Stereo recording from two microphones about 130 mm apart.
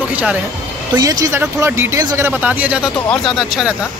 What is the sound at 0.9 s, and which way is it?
Speech, 30° right (ahead or behind).